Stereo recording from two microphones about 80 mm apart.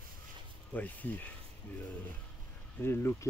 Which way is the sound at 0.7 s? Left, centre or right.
Left.